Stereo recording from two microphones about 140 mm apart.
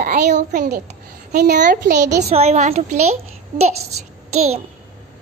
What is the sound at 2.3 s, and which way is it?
Speech, 50° right (ahead or behind).